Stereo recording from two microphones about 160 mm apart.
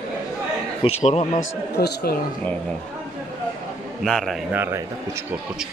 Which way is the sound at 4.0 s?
Centre (ahead or behind).